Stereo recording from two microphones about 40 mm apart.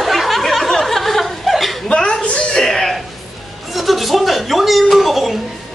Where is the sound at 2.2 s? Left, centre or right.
Left.